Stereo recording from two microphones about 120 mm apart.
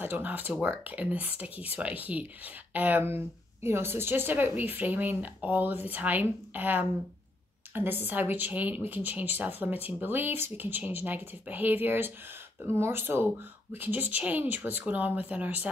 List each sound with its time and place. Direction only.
0.0 s speech: 15° right (ahead or behind)